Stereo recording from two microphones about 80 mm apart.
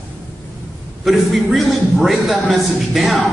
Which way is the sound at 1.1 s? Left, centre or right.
Centre.